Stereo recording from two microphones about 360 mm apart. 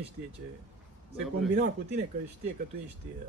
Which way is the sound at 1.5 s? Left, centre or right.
Right.